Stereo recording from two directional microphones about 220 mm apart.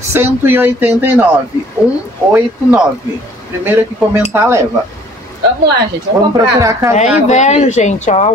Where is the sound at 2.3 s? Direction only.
5° right (ahead or behind).